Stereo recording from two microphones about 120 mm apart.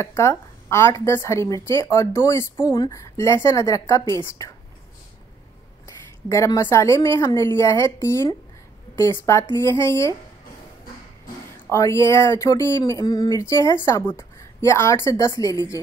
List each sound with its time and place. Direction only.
0.0 s speech: 25° left (ahead or behind)
5.9 s speech: 25° left (ahead or behind)
11.7 s speech: 25° left (ahead or behind)